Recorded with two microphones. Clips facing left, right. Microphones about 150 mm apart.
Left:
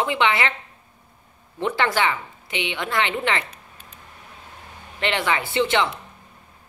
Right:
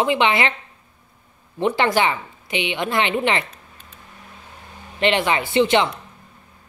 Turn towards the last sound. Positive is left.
turn(degrees=-20)  # may be behind; listen again after turning